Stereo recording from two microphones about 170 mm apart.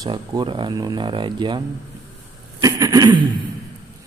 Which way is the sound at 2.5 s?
20° right (ahead or behind).